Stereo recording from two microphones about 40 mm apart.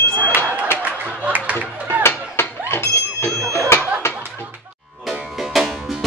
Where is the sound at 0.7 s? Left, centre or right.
Right.